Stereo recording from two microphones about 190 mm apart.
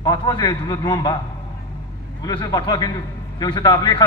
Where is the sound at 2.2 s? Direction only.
20° left (ahead or behind).